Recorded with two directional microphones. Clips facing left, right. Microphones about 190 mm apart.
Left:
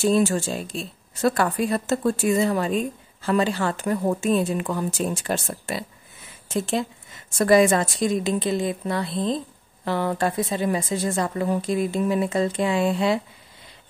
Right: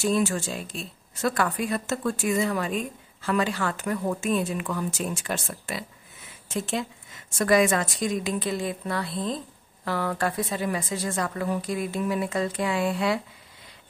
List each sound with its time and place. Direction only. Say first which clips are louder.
0.0 s a woman's voice: left 4 dB; 30° left (ahead or behind)